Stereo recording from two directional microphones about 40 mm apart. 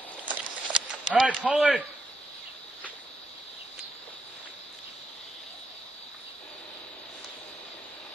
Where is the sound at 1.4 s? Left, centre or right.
Centre.